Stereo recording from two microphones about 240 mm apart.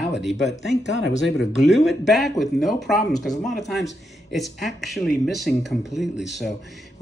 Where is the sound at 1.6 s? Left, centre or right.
Centre.